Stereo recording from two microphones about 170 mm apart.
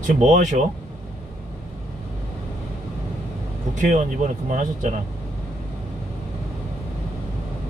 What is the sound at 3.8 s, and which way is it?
A man's voice, 45° right (ahead or behind).